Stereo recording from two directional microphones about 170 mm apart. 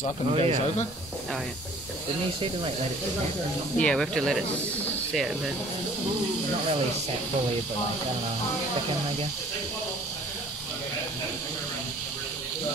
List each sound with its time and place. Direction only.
0.3 s speech: 35° right (ahead or behind)
3.7 s speech: 5° left (ahead or behind)